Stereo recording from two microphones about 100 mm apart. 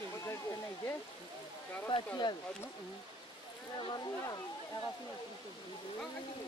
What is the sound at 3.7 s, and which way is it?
Speech, 50° left (ahead or behind).